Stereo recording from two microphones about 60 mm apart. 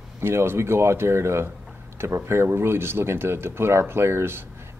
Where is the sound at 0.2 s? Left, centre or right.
Right.